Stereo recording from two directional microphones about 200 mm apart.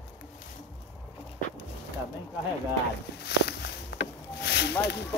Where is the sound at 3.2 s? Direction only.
55° left (ahead or behind).